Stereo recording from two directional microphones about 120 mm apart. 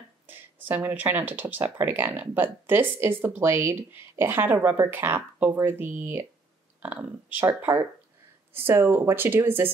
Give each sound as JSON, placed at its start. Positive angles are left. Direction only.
{"t": 0.3, "sound": "speech", "side_deg": -15}